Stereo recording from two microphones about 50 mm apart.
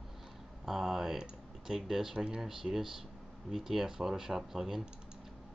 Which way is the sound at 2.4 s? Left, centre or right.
Centre.